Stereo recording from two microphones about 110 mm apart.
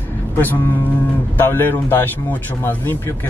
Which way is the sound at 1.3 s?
20° left (ahead or behind).